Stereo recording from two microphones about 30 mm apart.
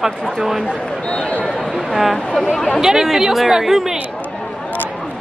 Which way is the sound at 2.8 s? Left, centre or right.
Centre.